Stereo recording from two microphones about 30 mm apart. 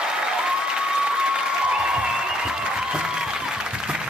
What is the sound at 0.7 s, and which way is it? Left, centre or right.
Applause, right.